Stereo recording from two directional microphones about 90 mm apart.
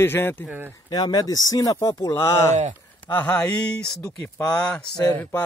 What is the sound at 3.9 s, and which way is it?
Speech, 35° left (ahead or behind).